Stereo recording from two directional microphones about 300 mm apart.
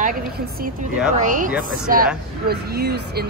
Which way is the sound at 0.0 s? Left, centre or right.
Right.